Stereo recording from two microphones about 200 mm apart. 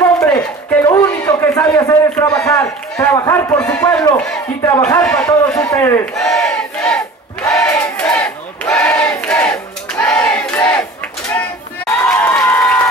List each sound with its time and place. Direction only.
0.0 s a sound: 15° left (ahead or behind)
1.2 s a man's voice: 15° left (ahead or behind)
6.1 s battle cry: centre (ahead or behind)
12.1 s crowd: 10° left (ahead or behind)